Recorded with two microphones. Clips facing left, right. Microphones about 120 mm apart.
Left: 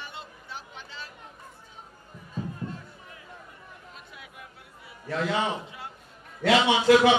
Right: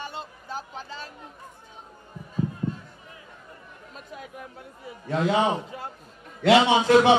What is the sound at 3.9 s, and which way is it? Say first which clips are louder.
Chatter: right 7 dB; 40° right (ahead or behind).